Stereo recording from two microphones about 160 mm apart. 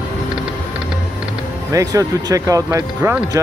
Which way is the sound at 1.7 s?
20° right (ahead or behind).